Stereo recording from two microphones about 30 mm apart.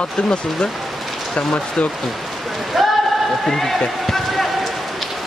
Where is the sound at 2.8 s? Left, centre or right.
Centre.